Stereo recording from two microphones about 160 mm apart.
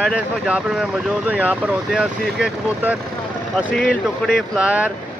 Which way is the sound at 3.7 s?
10° left (ahead or behind).